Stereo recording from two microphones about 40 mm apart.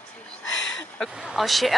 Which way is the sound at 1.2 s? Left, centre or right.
Centre.